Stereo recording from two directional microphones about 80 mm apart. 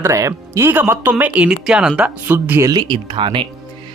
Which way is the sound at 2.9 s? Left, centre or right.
Right.